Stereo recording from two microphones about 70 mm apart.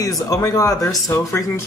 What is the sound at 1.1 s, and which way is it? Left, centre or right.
Speech, left.